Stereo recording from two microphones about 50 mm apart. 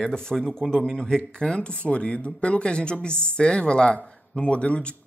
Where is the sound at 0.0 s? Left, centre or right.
Centre.